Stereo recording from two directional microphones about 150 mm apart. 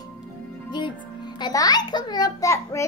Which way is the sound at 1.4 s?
25° left (ahead or behind).